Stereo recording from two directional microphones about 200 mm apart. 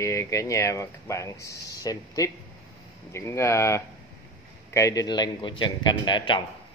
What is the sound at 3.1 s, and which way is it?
A man's voice, 15° left (ahead or behind).